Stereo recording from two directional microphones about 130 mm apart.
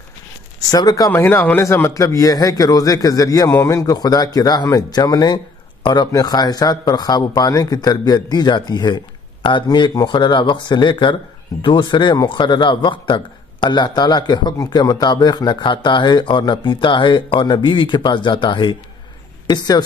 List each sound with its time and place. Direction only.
0.7 s a man's voice: 30° left (ahead or behind)